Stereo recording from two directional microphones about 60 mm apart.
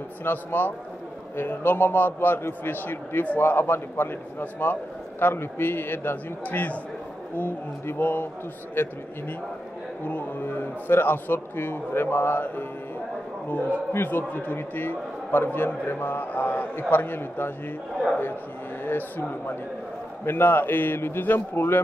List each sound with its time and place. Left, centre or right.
0.2 s a man's voice: left
10.0 s a man's voice: left
18.9 s a man's voice: left